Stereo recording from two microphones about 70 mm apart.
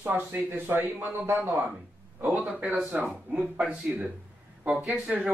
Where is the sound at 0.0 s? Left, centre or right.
Right.